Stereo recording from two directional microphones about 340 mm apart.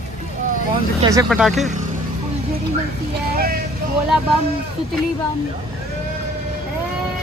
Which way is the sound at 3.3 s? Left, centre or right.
Right.